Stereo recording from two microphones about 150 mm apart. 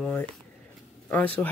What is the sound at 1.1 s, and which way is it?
Speech, 10° left (ahead or behind).